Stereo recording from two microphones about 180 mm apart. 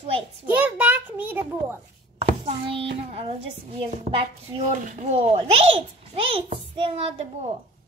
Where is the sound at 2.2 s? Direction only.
30° right (ahead or behind).